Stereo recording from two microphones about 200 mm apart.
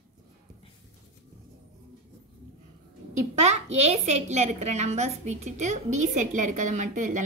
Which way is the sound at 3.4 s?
35° right (ahead or behind).